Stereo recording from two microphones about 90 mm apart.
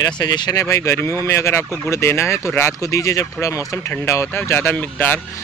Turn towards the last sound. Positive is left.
turn(degrees=20)  # may be behind; listen again after turning